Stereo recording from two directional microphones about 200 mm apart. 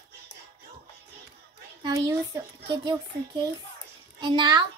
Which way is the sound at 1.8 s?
15° right (ahead or behind).